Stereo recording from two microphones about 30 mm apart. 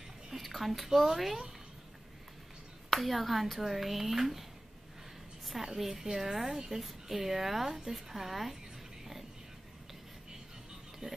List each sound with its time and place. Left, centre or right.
0.3 s speech: centre
0.8 s a woman's voice: centre
2.9 s speech: centre
5.6 s a woman's voice: centre
11.0 s speech: right